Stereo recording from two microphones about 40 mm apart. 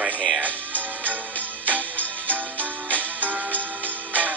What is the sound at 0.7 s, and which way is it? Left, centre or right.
Music, right.